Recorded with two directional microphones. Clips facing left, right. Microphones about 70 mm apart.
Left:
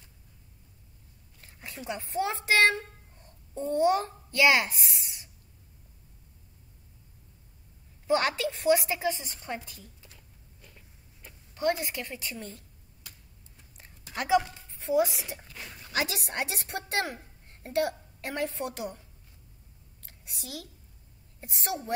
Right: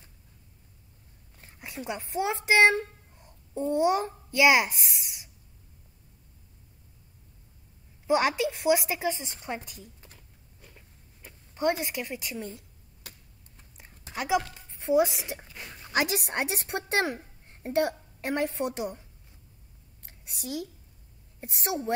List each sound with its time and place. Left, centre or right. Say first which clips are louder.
1.4 s a sound: right 1 dB; centre
1.9 s a child's voice: right 1 dB; centre
8.1 s a woman's voice: right 2 dB; centre
10.0 s a sound: right 2 dB; right
11.5 s a woman's voice: right 1 dB; right
14.1 s speech: left 2 dB; centre
14.5 s a woman's voice: right 3 dB; right